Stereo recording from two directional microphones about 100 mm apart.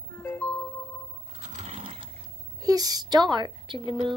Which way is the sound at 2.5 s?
40° right (ahead or behind).